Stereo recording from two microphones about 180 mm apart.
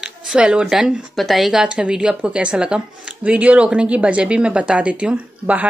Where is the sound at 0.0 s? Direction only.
5° right (ahead or behind).